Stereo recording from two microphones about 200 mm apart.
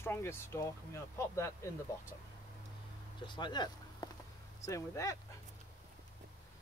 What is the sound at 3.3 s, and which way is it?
Speech, 20° left (ahead or behind).